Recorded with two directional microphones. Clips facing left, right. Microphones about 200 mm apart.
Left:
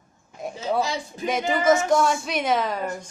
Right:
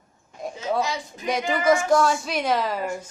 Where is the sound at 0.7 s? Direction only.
30° left (ahead or behind).